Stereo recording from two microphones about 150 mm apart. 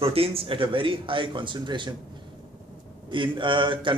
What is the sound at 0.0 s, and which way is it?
A man's voice, 40° right (ahead or behind).